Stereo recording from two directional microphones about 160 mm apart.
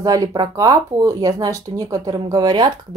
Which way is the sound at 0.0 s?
25° right (ahead or behind).